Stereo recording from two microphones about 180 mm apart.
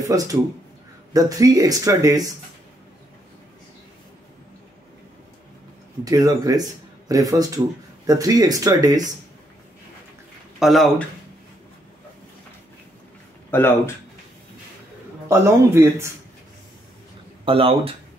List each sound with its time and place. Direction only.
0.0 s speech: 20° right (ahead or behind)
6.0 s speech: 20° right (ahead or behind)
10.6 s speech: centre (ahead or behind)
13.5 s speech: 10° left (ahead or behind)
15.2 s speech: 15° right (ahead or behind)
17.5 s speech: 30° right (ahead or behind)